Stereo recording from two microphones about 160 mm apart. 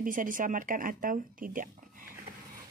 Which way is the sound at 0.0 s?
55° right (ahead or behind).